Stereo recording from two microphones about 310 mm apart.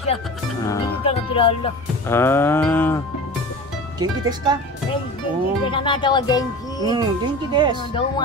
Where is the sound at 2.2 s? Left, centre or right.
Centre.